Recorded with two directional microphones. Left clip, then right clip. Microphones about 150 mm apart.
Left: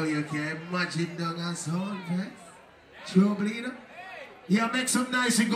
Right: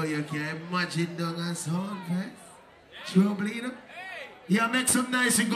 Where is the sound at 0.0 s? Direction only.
25° right (ahead or behind).